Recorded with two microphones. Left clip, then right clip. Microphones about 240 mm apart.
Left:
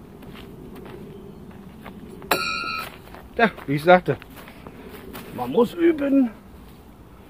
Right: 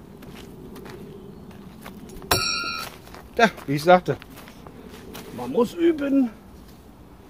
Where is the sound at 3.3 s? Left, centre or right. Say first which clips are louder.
Right 1 dB; right.